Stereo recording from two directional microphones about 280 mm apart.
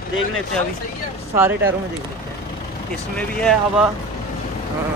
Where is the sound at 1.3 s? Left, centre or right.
Centre.